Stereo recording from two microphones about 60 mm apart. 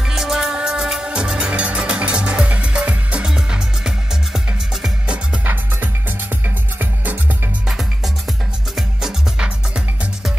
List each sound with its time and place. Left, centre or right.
0.1 s music: centre
5.4 s music: right
8.7 s music: centre